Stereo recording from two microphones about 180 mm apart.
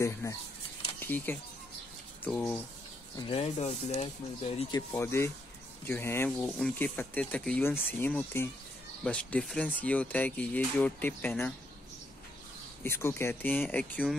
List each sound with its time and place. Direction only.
0.2 s speech: 15° left (ahead or behind)
3.3 s speech: 35° left (ahead or behind)
4.6 s speech: 20° left (ahead or behind)
12.8 s speech: 15° left (ahead or behind)